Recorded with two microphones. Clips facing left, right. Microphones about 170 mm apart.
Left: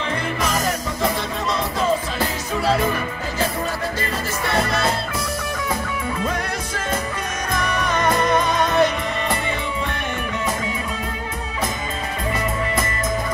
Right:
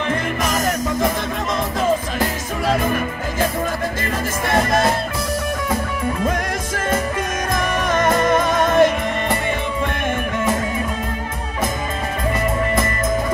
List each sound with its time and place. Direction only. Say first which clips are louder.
0.1 s music: even; 50° right (ahead or behind)
6.2 s music: right 3 dB; 50° right (ahead or behind)